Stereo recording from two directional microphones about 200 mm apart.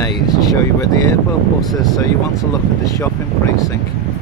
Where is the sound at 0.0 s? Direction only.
20° left (ahead or behind).